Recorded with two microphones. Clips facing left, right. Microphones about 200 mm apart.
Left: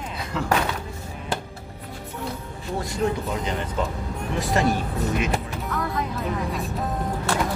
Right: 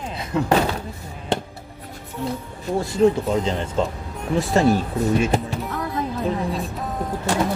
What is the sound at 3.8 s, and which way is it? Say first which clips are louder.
Speech: right 3 dB; 25° right (ahead or behind).